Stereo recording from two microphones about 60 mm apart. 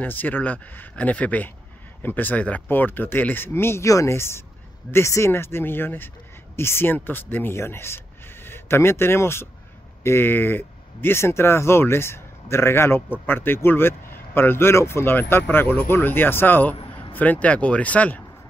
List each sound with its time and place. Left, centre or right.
0.0 s speech: left
3.8 s speech: left